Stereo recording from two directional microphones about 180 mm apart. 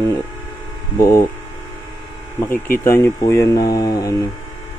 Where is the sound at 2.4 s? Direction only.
15° left (ahead or behind).